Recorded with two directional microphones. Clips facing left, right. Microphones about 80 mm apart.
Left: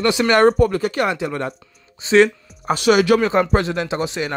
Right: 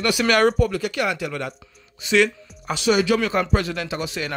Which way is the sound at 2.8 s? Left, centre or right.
Left.